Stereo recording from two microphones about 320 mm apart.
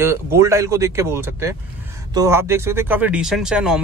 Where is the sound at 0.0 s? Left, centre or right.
Centre.